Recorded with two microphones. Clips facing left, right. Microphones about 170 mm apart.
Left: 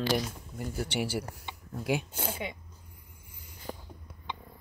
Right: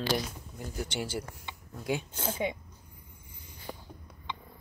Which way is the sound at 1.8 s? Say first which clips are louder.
Left 1 dB; 10° left (ahead or behind).